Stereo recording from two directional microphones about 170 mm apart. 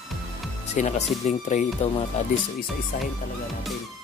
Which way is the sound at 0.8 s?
40° left (ahead or behind).